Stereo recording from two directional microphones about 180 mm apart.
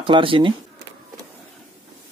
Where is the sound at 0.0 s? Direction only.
30° right (ahead or behind).